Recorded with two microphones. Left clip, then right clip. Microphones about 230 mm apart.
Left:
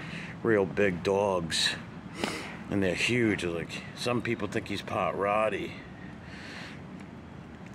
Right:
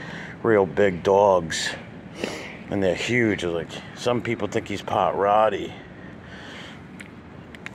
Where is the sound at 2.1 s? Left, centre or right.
Centre.